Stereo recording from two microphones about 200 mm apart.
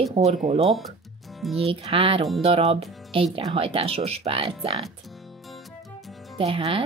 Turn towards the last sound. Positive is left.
turn(degrees=-25)  # may be behind; listen again after turning